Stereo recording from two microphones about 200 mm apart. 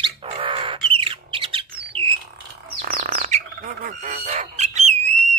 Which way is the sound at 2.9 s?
45° right (ahead or behind).